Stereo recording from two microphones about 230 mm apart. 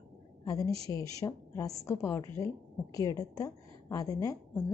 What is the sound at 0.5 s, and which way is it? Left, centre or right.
A woman's voice, centre.